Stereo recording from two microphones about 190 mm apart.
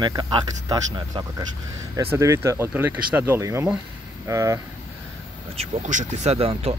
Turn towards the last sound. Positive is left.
turn(degrees=-30)  # may be behind; listen again after turning